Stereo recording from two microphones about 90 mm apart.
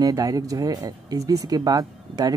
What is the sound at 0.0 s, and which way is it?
Speech, 45° right (ahead or behind).